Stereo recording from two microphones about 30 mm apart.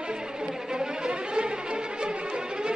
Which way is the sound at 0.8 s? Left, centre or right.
Right.